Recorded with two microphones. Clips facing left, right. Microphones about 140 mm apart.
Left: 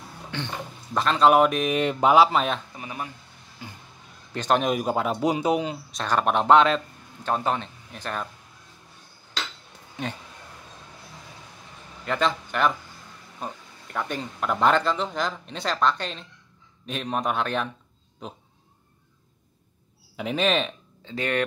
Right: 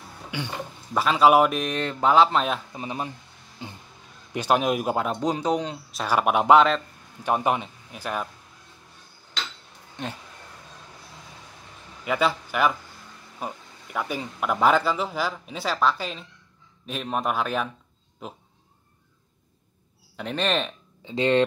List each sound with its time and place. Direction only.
0.3 s speech: 10° right (ahead or behind)
1.8 s speech: 15° left (ahead or behind)
2.2 s speech: centre (ahead or behind)
2.7 s speech: 25° right (ahead or behind)
3.6 s vehicle: 25° right (ahead or behind)
4.3 s speech: 10° right (ahead or behind)
10.0 s speech: 5° left (ahead or behind)
12.0 s a man's voice: 10° right (ahead or behind)
20.2 s speech: 5° left (ahead or behind)
21.0 s speech: 20° right (ahead or behind)